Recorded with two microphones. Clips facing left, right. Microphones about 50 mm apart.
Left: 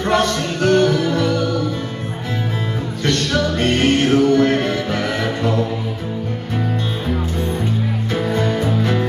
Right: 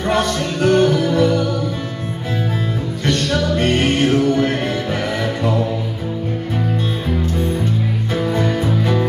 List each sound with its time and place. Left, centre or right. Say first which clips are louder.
0.0 s music: left 1 dB; centre
3.1 s music: even; centre